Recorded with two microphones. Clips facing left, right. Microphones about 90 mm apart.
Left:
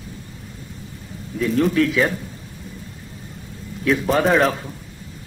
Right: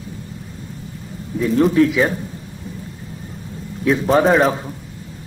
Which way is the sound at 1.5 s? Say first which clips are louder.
Right 4 dB; 25° right (ahead or behind).